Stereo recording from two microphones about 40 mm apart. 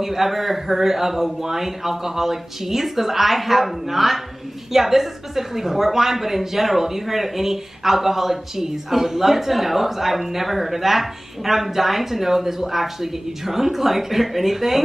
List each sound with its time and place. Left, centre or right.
0.0 s a woman's voice: centre